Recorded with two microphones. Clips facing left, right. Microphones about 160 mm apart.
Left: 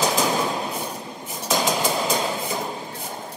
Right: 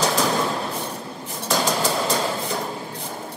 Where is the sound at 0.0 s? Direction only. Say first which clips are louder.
Even; 15° left (ahead or behind).